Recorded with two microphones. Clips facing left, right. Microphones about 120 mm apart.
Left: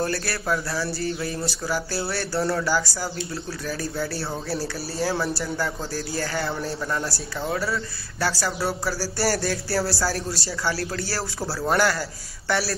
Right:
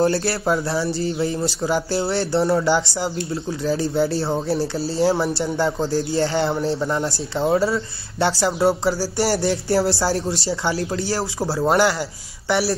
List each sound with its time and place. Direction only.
0.0 s speech: 25° right (ahead or behind)